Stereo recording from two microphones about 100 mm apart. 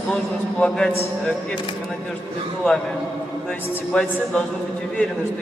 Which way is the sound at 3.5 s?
10° left (ahead or behind).